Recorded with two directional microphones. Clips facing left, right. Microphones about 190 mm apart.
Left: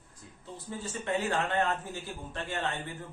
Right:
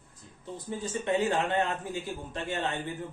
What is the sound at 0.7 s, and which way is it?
A man's voice, 20° right (ahead or behind).